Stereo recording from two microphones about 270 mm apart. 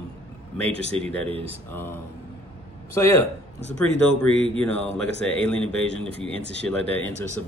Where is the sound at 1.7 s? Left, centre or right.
Centre.